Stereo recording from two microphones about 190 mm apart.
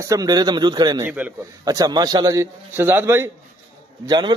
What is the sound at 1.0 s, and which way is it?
Speech, 10° right (ahead or behind).